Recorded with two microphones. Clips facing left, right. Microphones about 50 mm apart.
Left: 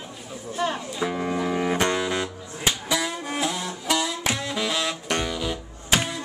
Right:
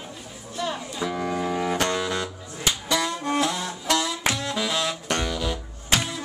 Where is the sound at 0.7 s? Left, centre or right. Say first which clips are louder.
Left 1 dB; centre.